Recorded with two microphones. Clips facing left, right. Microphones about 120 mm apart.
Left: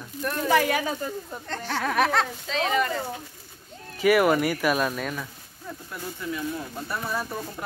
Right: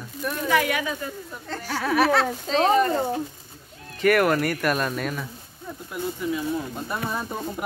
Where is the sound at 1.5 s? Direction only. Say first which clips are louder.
Right 2 dB; 5° right (ahead or behind).